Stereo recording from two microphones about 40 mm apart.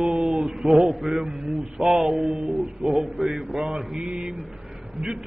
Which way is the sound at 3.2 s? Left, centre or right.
Centre.